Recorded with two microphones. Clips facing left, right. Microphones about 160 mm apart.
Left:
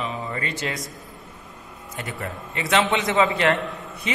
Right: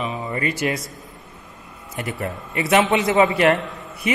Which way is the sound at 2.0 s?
20° right (ahead or behind).